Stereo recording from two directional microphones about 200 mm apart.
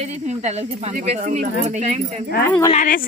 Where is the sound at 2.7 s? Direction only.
40° left (ahead or behind).